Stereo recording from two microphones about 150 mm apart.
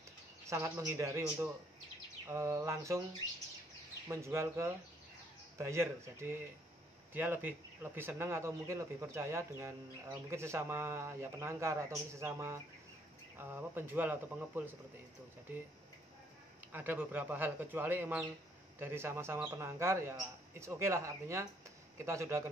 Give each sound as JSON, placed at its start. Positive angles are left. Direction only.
{"t": 0.5, "sound": "a man's voice", "side_deg": -20}
{"t": 4.1, "sound": "a man's voice", "side_deg": -20}
{"t": 16.7, "sound": "a man's voice", "side_deg": -10}